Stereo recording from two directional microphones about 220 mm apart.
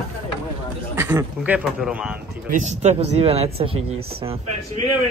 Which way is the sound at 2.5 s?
30° right (ahead or behind).